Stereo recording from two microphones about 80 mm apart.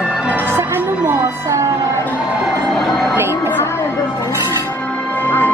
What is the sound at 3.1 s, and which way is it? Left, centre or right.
Music, right.